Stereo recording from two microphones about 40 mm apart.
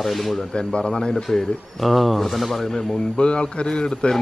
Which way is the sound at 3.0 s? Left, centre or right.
Left.